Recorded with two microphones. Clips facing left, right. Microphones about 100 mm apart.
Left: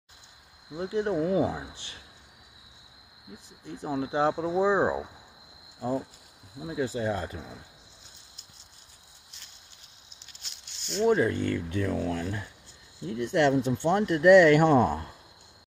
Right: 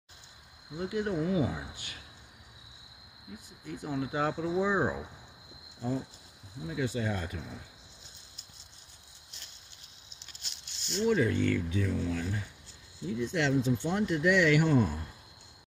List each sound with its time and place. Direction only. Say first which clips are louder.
0.7 s speech: left 4 dB; 30° left (ahead or behind)
1.8 s a sound: even; 30° left (ahead or behind)
3.3 s speech: left 1 dB; 30° left (ahead or behind)
11.1 s speech: left 3 dB; 40° left (ahead or behind)
11.7 s speech: left 3 dB; 55° left (ahead or behind)